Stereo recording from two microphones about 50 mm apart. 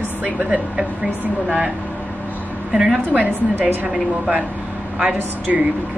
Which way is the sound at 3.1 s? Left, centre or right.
Right.